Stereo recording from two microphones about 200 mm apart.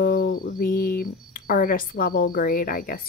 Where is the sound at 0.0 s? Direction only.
50° left (ahead or behind).